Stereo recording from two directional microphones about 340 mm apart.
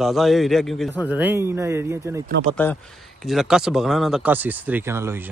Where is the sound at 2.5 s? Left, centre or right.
Centre.